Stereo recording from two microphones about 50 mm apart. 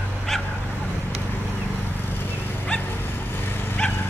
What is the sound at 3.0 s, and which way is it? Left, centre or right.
Vehicle, left.